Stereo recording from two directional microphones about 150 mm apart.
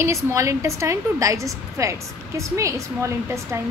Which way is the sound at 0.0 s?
20° right (ahead or behind).